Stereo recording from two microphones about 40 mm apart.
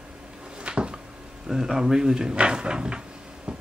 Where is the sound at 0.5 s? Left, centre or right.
Right.